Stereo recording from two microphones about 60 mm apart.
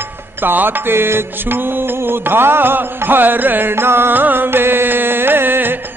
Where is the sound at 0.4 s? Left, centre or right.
Right.